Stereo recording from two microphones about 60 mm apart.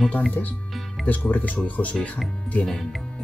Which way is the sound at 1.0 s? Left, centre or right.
Left.